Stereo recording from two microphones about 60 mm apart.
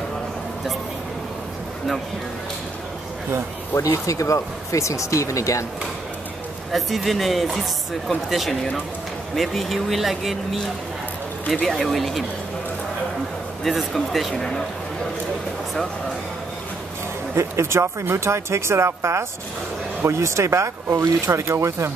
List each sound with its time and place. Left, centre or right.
3.7 s speech: left
6.7 s speech: centre
11.6 s speech: centre
13.7 s speech: centre
17.4 s speech: right